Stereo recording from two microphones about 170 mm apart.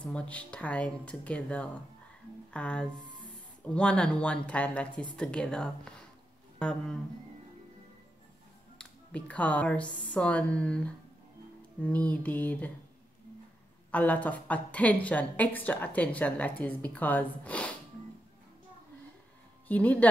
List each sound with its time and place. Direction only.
0.0 s a woman's voice: 5° left (ahead or behind)
3.0 s music: 30° right (ahead or behind)
3.6 s a woman's voice: 5° left (ahead or behind)
8.7 s a woman's voice: 5° left (ahead or behind)
11.8 s a woman's voice: 10° left (ahead or behind)
13.9 s a woman's voice: 10° left (ahead or behind)
19.7 s a woman's voice: 10° left (ahead or behind)